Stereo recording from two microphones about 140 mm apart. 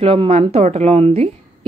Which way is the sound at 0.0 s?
40° right (ahead or behind).